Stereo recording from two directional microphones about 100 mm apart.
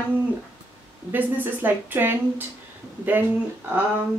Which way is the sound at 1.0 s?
20° right (ahead or behind).